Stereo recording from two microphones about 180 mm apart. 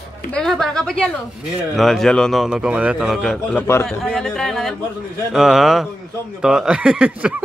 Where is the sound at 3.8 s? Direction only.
5° left (ahead or behind).